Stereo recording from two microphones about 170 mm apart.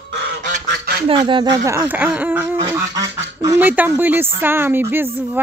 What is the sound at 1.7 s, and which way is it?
Speech, 10° right (ahead or behind).